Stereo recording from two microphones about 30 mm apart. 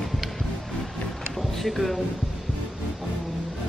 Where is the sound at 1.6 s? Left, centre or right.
Centre.